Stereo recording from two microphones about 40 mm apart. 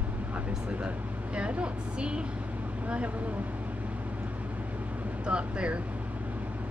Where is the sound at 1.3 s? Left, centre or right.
Right.